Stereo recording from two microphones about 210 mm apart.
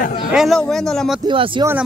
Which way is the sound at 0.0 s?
45° left (ahead or behind).